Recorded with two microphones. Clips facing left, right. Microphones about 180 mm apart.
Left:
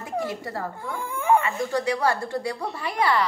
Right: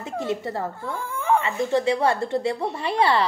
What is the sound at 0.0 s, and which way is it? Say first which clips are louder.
Speech: right 2 dB; 25° right (ahead or behind).